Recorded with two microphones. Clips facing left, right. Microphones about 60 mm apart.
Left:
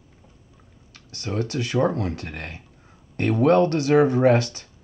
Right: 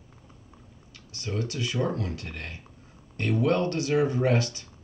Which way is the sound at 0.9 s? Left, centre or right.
Left.